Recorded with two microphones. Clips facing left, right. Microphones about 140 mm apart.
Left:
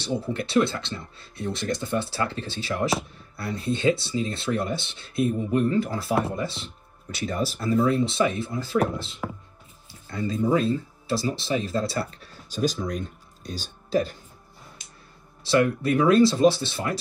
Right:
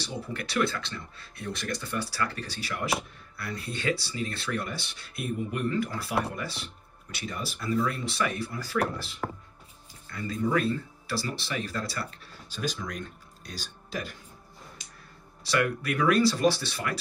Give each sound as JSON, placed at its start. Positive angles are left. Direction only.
{"t": 0.0, "sound": "speech", "side_deg": 30}
{"t": 7.1, "sound": "speech", "side_deg": 40}
{"t": 15.4, "sound": "speech", "side_deg": 30}